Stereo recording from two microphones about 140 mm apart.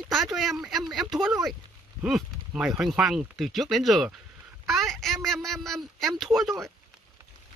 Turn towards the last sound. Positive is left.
turn(degrees=0)  # may be behind; listen again after turning